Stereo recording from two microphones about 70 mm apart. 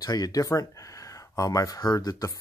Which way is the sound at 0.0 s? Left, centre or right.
Left.